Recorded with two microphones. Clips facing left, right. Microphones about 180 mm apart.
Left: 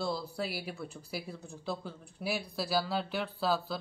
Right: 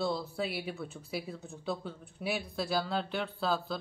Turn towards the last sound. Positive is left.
turn(degrees=0)  # may be behind; listen again after turning